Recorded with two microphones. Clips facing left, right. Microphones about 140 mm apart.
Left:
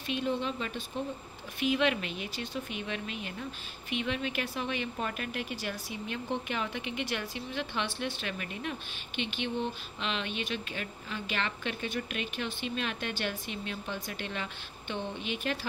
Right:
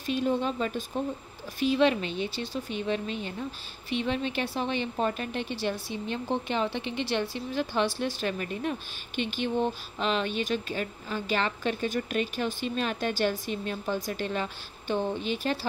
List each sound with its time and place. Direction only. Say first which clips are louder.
0.0 s a woman's voice: right 5 dB; 40° right (ahead or behind)